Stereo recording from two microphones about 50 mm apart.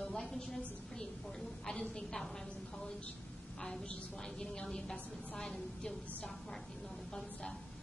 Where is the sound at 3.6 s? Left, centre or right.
Centre.